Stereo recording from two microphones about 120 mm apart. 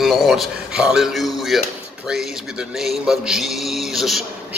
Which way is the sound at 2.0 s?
5° right (ahead or behind).